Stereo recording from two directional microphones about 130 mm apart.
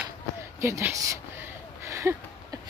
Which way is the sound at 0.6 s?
20° right (ahead or behind).